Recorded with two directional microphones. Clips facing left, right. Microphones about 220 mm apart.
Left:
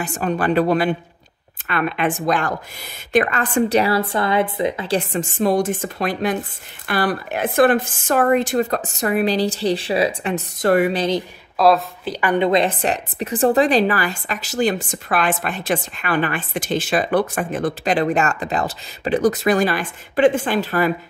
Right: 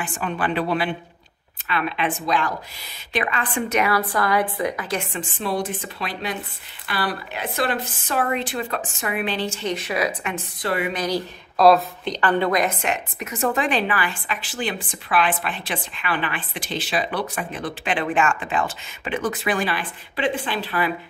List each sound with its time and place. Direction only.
0.0 s a woman's voice: 40° left (ahead or behind)
10.9 s speech: 25° left (ahead or behind)
11.5 s a woman's voice: centre (ahead or behind)
12.4 s a woman's voice: 30° left (ahead or behind)